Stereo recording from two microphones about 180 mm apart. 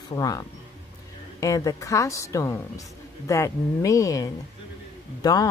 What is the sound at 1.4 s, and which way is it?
Speech, 20° left (ahead or behind).